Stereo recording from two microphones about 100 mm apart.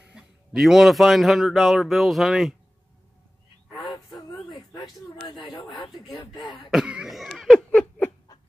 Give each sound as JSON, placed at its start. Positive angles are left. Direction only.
{"t": 0.0, "sound": "a man's voice", "side_deg": -10}
{"t": 4.7, "sound": "speech", "side_deg": 55}
{"t": 6.1, "sound": "speech", "side_deg": 40}
{"t": 6.7, "sound": "cough", "side_deg": -5}